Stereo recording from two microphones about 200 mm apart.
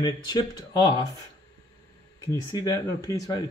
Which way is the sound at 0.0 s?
20° left (ahead or behind).